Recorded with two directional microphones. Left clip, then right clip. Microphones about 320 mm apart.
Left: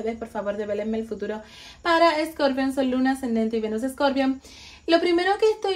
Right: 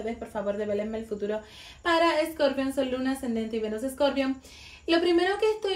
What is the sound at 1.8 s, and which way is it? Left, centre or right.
Speech, left.